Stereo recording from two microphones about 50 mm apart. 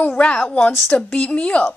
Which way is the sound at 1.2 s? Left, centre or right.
Left.